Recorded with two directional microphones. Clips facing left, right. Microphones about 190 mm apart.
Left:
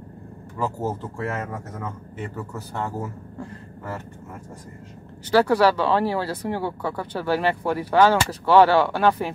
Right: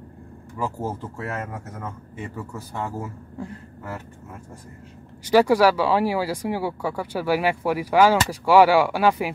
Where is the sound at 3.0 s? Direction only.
10° right (ahead or behind).